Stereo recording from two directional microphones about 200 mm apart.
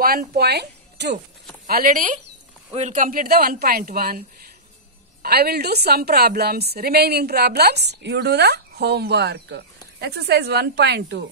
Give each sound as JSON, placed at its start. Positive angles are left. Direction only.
{"t": 0.0, "sound": "speech", "side_deg": -50}
{"t": 1.7, "sound": "a woman's voice", "side_deg": -45}